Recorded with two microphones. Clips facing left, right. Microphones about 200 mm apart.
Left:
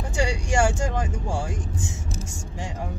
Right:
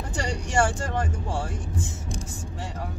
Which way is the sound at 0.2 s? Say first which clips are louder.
Left 2 dB; 10° left (ahead or behind).